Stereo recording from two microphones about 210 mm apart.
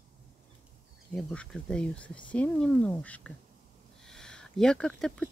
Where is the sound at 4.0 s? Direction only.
5° left (ahead or behind).